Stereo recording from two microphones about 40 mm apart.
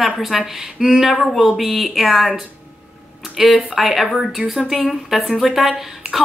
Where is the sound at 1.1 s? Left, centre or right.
Centre.